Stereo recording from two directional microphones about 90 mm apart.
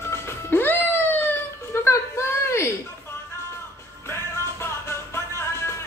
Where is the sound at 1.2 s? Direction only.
30° left (ahead or behind).